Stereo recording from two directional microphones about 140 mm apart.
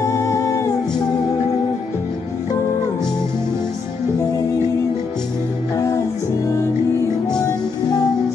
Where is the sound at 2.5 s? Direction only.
20° left (ahead or behind).